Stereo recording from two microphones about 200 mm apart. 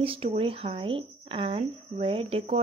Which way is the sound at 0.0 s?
30° right (ahead or behind).